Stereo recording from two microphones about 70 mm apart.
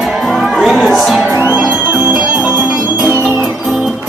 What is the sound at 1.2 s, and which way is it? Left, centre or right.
Music, right.